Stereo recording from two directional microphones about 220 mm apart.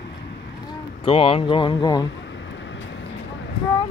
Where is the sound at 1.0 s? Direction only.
25° left (ahead or behind).